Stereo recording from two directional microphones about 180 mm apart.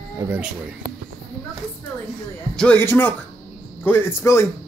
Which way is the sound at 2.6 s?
10° left (ahead or behind).